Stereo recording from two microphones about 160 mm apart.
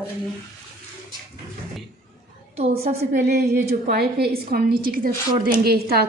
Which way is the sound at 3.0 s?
90° right.